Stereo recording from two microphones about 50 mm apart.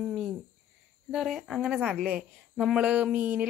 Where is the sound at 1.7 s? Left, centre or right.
Centre.